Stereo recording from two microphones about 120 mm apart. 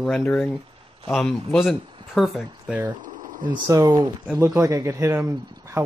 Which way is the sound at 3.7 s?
30° right (ahead or behind).